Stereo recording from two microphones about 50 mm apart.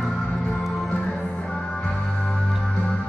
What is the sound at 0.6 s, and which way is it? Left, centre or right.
Music, centre.